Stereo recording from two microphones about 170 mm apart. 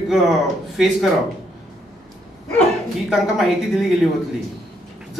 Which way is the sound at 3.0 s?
Centre (ahead or behind).